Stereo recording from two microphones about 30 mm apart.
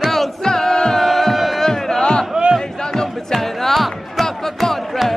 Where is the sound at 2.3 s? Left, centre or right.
Right.